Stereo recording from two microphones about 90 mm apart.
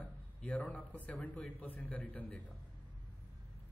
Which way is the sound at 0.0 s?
15° left (ahead or behind).